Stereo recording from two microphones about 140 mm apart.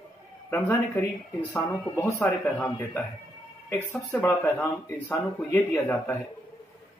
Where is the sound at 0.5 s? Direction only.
15° left (ahead or behind).